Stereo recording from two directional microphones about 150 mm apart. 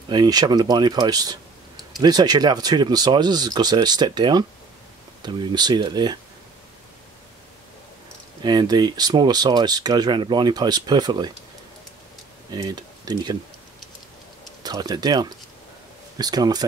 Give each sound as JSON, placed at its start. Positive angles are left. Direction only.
{"t": 0.1, "sound": "speech", "side_deg": -25}
{"t": 8.4, "sound": "speech", "side_deg": -25}
{"t": 12.4, "sound": "speech", "side_deg": -25}
{"t": 14.6, "sound": "speech", "side_deg": -25}